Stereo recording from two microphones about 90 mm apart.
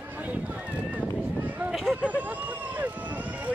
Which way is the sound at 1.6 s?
5° right (ahead or behind).